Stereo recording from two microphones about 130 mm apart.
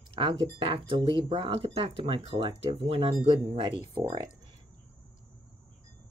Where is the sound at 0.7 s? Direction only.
45° right (ahead or behind).